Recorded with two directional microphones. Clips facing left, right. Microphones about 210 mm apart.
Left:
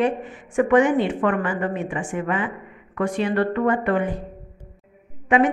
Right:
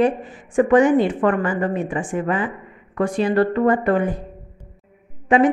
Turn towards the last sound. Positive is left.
turn(degrees=-35)  # may be behind; listen again after turning